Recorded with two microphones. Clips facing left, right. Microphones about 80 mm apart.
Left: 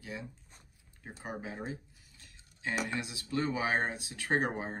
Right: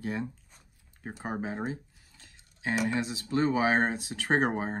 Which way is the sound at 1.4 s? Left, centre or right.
Right.